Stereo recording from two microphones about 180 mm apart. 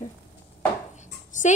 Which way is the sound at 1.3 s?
45° left (ahead or behind).